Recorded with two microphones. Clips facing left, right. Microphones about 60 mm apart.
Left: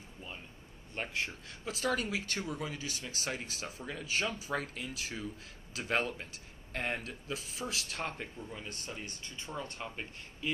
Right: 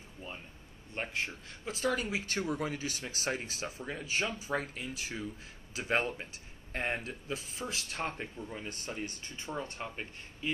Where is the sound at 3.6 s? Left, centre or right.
Centre.